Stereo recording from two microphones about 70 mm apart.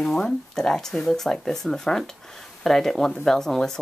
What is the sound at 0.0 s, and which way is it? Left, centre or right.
Speech, centre.